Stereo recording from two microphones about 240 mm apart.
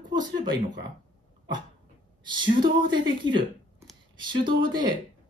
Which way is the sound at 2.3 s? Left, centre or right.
Centre.